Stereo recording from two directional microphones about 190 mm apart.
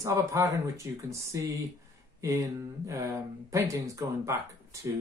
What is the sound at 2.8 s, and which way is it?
Speech, 15° right (ahead or behind).